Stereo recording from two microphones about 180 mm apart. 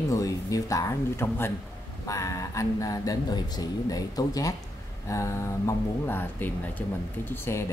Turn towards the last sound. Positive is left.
turn(degrees=15)  # may be behind; listen again after turning